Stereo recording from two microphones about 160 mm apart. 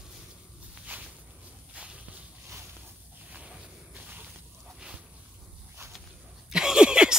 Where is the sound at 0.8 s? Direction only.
5° right (ahead or behind).